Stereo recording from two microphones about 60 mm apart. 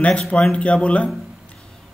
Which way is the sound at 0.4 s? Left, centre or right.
Centre.